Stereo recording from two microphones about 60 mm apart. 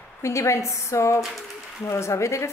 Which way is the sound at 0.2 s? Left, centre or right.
Left.